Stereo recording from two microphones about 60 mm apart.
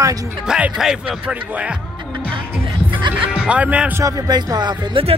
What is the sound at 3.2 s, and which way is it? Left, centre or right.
Speech, centre.